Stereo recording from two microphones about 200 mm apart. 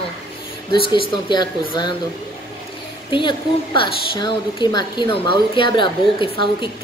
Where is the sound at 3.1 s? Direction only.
25° left (ahead or behind).